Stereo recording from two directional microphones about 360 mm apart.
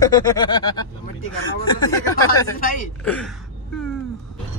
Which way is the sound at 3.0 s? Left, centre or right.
Centre.